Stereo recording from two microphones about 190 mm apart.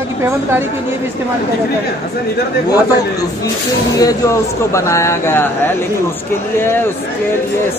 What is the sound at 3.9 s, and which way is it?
A man's voice, 15° left (ahead or behind).